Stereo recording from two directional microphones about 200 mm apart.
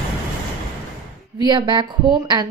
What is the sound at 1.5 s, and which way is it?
Speech, 25° right (ahead or behind).